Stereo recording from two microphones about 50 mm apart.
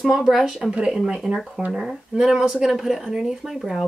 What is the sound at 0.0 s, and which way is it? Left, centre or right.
Speech, centre.